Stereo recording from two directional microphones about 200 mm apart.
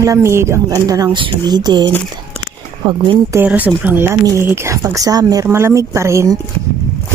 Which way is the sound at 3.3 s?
10° right (ahead or behind).